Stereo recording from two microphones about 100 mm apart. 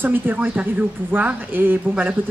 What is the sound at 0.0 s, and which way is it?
A woman's voice, 20° right (ahead or behind).